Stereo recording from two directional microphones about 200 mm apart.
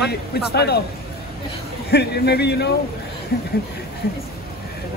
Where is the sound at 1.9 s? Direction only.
55° left (ahead or behind).